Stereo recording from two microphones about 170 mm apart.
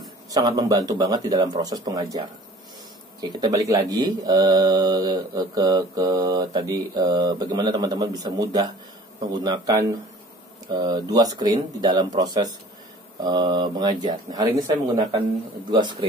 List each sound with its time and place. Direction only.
0.3 s speech: 25° right (ahead or behind)
3.2 s speech: 25° right (ahead or behind)
15.7 s speech: 25° right (ahead or behind)